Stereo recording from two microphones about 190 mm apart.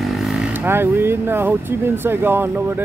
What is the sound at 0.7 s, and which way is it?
Speech, 10° right (ahead or behind).